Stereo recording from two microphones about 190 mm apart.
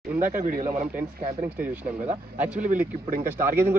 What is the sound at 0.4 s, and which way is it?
Speech, 45° right (ahead or behind).